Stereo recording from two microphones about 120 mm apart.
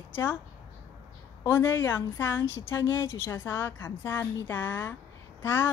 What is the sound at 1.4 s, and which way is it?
Speech, 20° left (ahead or behind).